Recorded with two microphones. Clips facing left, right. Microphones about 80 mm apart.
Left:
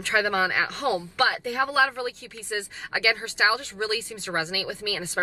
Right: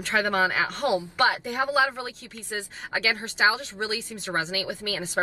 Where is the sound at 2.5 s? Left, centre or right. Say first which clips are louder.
Left 1 dB; centre.